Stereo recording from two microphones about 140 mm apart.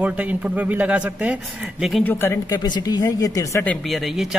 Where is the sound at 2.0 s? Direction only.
15° left (ahead or behind).